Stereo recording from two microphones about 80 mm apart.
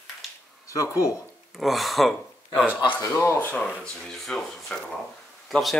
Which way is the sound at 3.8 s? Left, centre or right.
Centre.